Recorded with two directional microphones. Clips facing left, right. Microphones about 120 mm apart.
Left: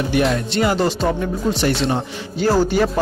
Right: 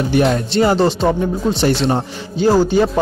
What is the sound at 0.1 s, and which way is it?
Speech, 30° right (ahead or behind).